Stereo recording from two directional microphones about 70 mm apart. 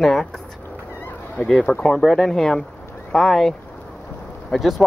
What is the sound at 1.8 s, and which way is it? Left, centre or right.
Speech, centre.